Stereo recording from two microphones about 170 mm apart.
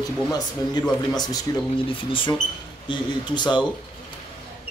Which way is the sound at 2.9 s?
25° left (ahead or behind).